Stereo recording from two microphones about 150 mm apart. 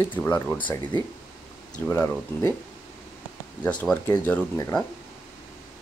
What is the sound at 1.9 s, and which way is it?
Speech, 15° left (ahead or behind).